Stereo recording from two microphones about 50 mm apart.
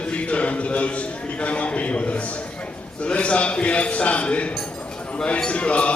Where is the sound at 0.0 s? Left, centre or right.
Left.